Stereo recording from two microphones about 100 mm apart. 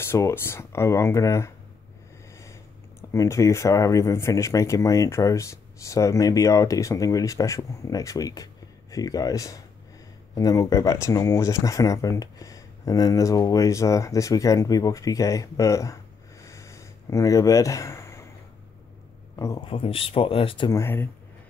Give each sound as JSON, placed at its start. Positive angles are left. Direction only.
{"t": 0.0, "sound": "speech", "side_deg": 25}
{"t": 3.0, "sound": "speech", "side_deg": 30}
{"t": 19.3, "sound": "speech", "side_deg": 35}
{"t": 19.6, "sound": "speech", "side_deg": 65}
{"t": 20.7, "sound": "speech", "side_deg": 25}